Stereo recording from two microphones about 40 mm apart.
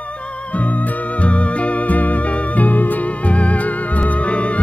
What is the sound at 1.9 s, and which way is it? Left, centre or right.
Music, left.